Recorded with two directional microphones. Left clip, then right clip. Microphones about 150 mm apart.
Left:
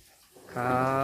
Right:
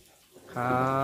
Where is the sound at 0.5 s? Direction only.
5° right (ahead or behind).